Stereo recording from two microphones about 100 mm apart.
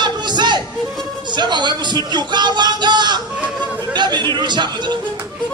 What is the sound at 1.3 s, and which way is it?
Speech, 50° right (ahead or behind).